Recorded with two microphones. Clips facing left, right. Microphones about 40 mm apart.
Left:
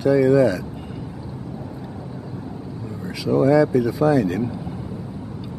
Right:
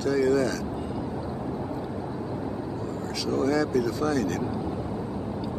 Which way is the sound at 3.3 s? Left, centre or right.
Centre.